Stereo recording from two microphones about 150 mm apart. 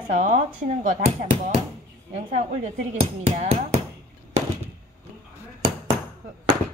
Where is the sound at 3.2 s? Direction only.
45° right (ahead or behind).